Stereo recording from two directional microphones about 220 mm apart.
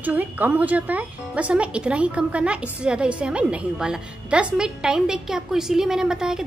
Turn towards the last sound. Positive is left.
turn(degrees=0)  # may be behind; listen again after turning